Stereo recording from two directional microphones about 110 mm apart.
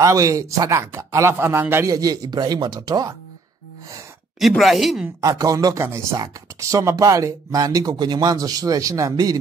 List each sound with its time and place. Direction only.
0.0 s speech: 30° right (ahead or behind)
1.9 s speech: 35° right (ahead or behind)
4.4 s speech: centre (ahead or behind)
5.2 s speech: 35° right (ahead or behind)